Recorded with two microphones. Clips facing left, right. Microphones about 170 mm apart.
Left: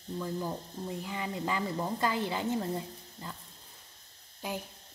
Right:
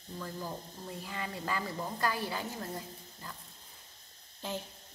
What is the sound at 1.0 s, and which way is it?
A woman's voice, 15° left (ahead or behind).